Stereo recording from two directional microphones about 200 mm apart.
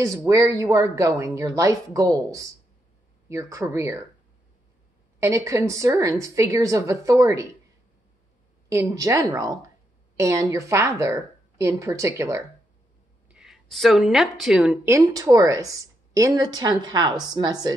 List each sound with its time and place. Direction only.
0.2 s speech: 15° right (ahead or behind)
5.2 s speech: 15° right (ahead or behind)
8.6 s speech: 15° right (ahead or behind)
13.3 s speech: centre (ahead or behind); by 17.7 s 20° right (ahead or behind)